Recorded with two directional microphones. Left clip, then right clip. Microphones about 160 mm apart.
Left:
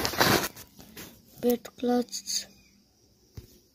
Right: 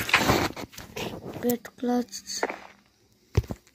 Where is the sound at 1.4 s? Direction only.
15° left (ahead or behind).